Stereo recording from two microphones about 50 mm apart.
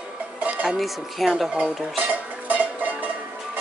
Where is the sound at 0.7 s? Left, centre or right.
Centre.